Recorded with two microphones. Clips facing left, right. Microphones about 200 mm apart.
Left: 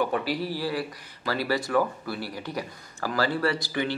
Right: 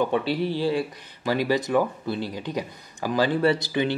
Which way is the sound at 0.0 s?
25° right (ahead or behind).